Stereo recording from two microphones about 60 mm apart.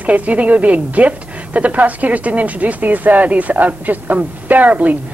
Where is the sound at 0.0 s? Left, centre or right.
Right.